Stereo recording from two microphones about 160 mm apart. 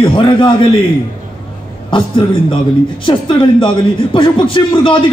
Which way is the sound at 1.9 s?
30° left (ahead or behind).